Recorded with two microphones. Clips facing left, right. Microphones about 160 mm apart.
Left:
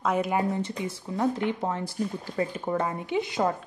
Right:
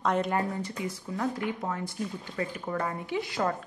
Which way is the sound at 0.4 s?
25° left (ahead or behind).